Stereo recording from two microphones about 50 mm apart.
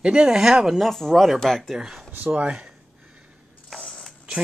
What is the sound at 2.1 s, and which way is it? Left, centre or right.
Speech, right.